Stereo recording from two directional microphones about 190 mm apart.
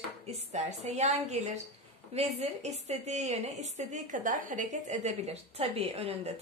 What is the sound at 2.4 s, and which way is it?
A woman's voice, 35° right (ahead or behind).